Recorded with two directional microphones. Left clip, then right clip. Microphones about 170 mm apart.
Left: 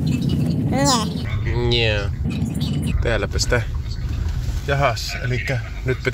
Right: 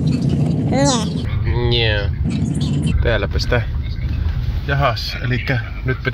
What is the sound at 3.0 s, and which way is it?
Speech, 5° right (ahead or behind).